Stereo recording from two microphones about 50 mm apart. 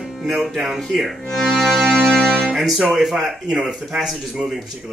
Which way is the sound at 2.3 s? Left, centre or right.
Centre.